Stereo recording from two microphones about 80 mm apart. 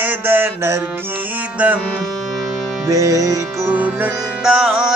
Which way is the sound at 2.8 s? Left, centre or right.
Right.